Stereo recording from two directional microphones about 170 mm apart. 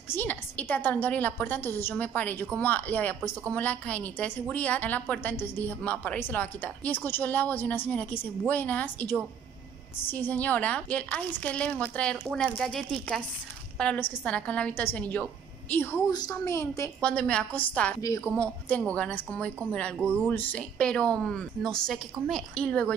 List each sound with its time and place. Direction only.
0.1 s a woman's voice: 10° left (ahead or behind)
18.0 s speech: 20° left (ahead or behind)
18.3 s a woman's voice: 10° left (ahead or behind)